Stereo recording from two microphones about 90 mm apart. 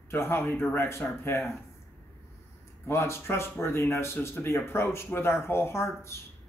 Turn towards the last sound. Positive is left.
turn(degrees=30)  # may be behind; listen again after turning